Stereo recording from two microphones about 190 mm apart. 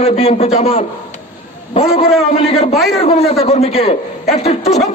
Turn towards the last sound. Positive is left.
turn(degrees=35)  # may be behind; listen again after turning